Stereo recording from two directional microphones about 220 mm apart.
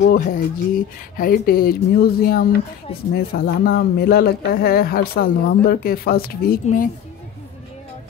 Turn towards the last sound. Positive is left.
turn(degrees=40)  # may be behind; listen again after turning